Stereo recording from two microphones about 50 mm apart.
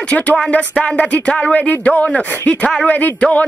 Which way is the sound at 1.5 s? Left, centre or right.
Left.